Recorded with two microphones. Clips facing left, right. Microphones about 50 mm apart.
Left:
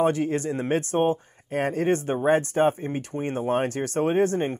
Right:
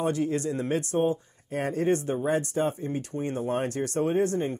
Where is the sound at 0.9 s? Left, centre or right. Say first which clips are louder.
Left 3 dB; left.